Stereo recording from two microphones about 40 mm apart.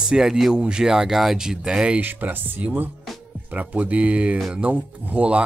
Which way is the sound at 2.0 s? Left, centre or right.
Right.